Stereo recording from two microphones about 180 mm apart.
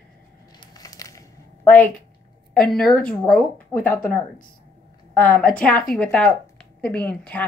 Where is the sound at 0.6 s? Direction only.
20° left (ahead or behind).